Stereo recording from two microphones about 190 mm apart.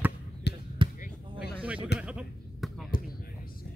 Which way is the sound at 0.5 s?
60° left (ahead or behind).